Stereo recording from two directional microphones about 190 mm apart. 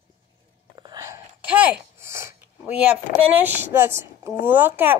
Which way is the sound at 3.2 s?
10° right (ahead or behind).